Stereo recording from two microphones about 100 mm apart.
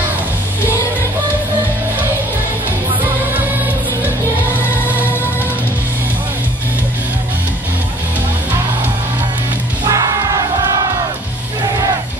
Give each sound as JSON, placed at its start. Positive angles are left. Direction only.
{"t": 9.8, "sound": "music", "side_deg": -35}